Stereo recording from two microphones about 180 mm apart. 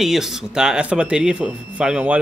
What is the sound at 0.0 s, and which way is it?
Speech, centre (ahead or behind).